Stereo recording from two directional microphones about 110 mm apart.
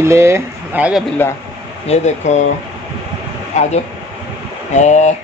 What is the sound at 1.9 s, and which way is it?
Speech, 75° left (ahead or behind).